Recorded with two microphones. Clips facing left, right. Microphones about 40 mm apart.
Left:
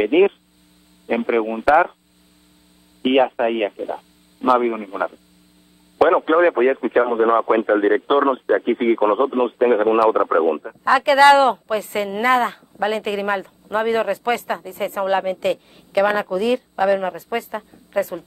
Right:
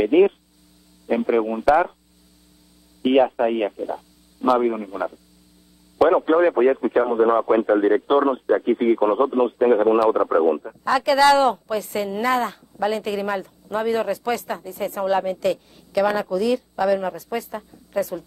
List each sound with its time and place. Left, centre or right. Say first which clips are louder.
0.0 s speech: left 1 dB; left
3.0 s speech: left 1 dB; left